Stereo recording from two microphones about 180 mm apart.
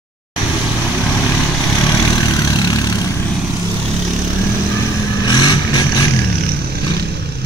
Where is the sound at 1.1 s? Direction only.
10° left (ahead or behind).